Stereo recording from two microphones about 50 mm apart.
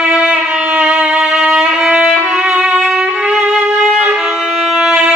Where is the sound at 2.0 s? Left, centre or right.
Centre.